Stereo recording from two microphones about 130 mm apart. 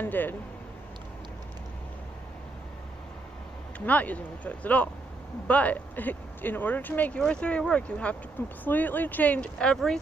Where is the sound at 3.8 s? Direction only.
10° left (ahead or behind).